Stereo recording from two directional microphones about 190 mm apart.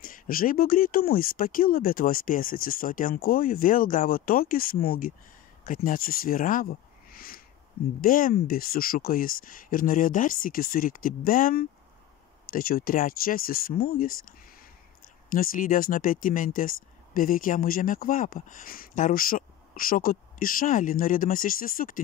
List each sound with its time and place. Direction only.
0.0 s speech: 50° left (ahead or behind)
15.3 s speech: 45° left (ahead or behind)